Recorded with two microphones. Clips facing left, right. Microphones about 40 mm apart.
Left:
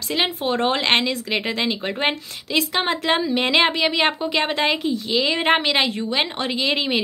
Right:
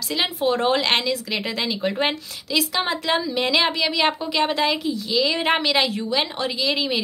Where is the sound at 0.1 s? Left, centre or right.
Left.